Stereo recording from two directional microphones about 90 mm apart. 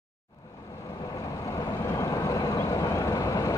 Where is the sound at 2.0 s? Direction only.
40° left (ahead or behind).